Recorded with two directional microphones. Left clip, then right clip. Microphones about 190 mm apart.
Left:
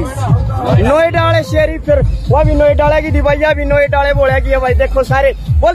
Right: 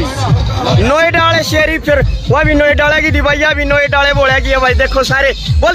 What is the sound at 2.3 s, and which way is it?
Speech, 20° right (ahead or behind).